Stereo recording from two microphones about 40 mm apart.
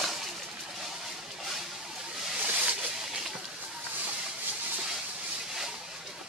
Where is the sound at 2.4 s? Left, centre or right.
Right.